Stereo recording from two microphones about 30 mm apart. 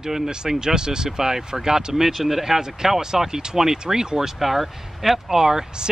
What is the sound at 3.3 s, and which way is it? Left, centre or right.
Speech, right.